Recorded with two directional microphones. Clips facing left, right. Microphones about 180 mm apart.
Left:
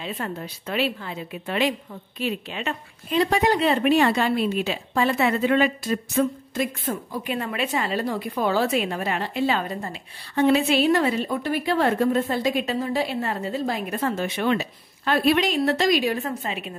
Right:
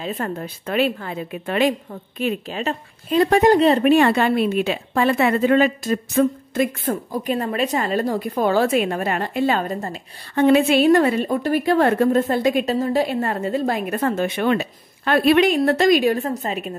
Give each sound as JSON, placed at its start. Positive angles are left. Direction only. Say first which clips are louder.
{"t": 0.0, "sound": "a woman's voice", "louder": "right 5 dB", "side_deg": -45}
{"t": 2.6, "sound": "a woman's voice", "louder": "right 5 dB", "side_deg": -40}
{"t": 4.0, "sound": "a woman's voice", "louder": "right 4 dB", "side_deg": -55}